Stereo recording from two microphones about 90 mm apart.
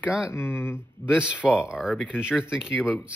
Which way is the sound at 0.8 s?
10° right (ahead or behind).